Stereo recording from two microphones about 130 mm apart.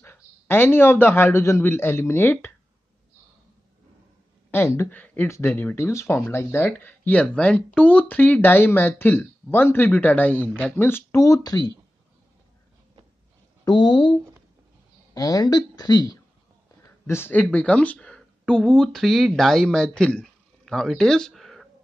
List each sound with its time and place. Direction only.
0.0 s a man's voice: 15° left (ahead or behind)
4.5 s speech: 20° left (ahead or behind)
13.7 s speech: 35° left (ahead or behind)
15.1 s speech: 30° left (ahead or behind)
17.0 s speech: 15° left (ahead or behind)